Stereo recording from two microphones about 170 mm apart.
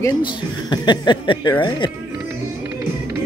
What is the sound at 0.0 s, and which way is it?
Speech, 25° left (ahead or behind).